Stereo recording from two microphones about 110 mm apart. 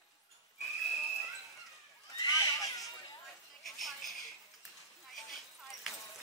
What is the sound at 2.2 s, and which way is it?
Horse, 35° left (ahead or behind).